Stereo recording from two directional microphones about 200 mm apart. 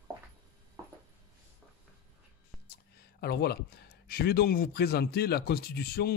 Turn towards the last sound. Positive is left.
turn(degrees=50)  # may be behind; listen again after turning